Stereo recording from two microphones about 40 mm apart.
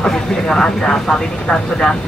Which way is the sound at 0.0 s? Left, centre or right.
Centre.